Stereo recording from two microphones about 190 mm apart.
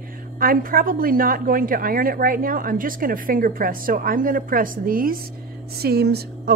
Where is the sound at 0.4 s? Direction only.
50° right (ahead or behind).